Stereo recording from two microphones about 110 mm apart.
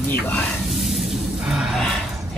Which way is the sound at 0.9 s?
Centre (ahead or behind).